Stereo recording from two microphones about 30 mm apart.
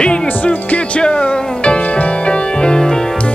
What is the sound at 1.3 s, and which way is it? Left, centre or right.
Music, left.